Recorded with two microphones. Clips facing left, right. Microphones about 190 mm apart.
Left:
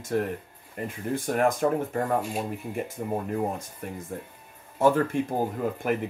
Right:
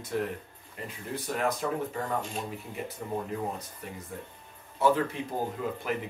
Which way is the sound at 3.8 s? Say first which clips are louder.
Left 7 dB; 50° left (ahead or behind).